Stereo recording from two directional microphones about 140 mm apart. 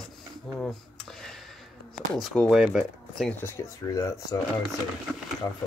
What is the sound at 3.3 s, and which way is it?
Speech, 15° left (ahead or behind).